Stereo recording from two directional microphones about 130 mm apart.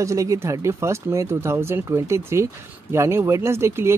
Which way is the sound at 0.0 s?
25° right (ahead or behind).